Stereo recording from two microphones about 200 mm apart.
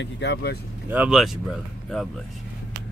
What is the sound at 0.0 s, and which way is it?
Speech, 60° left (ahead or behind).